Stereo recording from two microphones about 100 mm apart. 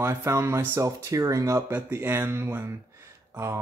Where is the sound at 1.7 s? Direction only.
20° right (ahead or behind).